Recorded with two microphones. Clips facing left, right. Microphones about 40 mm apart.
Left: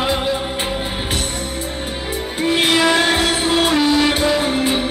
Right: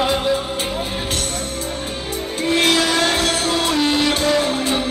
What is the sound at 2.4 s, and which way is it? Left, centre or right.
Music, centre.